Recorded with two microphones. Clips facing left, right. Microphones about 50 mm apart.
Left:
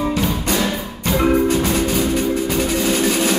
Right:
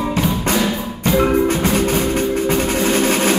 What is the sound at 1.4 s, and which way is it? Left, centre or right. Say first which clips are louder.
Music: right 1 dB; right.